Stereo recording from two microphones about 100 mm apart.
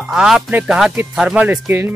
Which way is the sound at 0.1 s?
5° right (ahead or behind).